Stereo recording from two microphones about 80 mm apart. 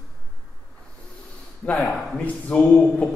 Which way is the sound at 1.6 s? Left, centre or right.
Centre.